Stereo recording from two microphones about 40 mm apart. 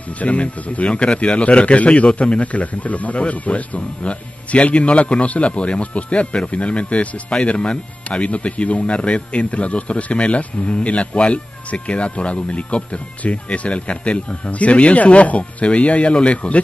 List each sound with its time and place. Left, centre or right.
0.2 s speech: left